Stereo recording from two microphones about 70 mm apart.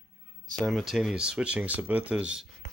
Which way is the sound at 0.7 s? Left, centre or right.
Centre.